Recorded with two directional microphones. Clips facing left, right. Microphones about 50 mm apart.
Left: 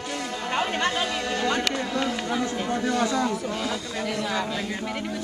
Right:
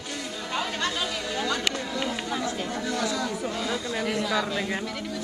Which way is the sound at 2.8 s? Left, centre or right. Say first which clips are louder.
Left 5 dB; left.